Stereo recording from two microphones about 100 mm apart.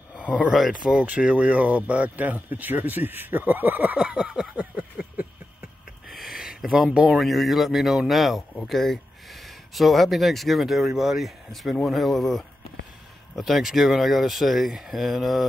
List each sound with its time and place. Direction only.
0.4 s speech: centre (ahead or behind)
1.0 s speech: 15° right (ahead or behind)
6.0 s speech: centre (ahead or behind)